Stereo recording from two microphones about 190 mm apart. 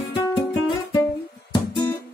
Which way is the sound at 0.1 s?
20° left (ahead or behind).